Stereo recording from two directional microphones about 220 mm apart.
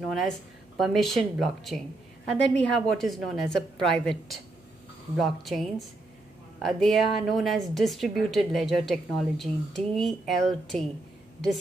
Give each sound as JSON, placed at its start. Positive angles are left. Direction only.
{"t": 0.7, "sound": "speech", "side_deg": 0}